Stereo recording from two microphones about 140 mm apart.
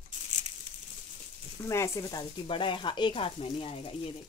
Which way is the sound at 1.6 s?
20° left (ahead or behind).